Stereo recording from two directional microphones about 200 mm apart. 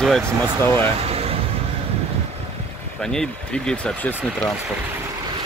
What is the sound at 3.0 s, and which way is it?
Speech, 5° left (ahead or behind).